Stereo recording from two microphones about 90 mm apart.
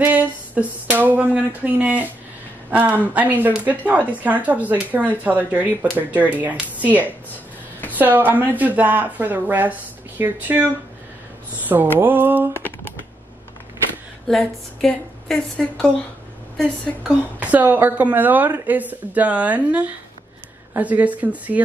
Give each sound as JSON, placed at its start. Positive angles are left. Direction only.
{"t": 0.0, "sound": "speech", "side_deg": -15}
{"t": 8.0, "sound": "speech", "side_deg": -20}
{"t": 14.2, "sound": "a woman's voice", "side_deg": 5}
{"t": 17.4, "sound": "speech", "side_deg": -20}